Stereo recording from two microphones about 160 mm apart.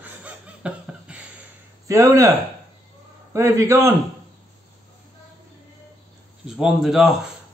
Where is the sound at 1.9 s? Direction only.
20° right (ahead or behind).